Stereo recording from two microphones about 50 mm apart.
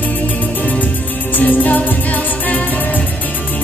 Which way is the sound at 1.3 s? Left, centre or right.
Left.